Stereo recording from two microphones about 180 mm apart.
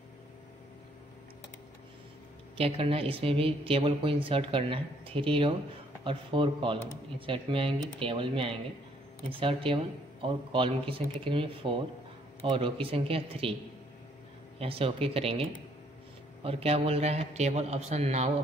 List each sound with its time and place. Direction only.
2.5 s speech: 30° right (ahead or behind)
14.6 s speech: 30° right (ahead or behind)